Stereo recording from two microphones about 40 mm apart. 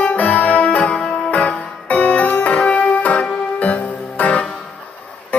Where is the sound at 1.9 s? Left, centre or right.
Left.